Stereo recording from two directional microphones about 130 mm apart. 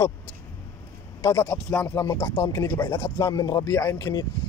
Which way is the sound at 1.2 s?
30° left (ahead or behind).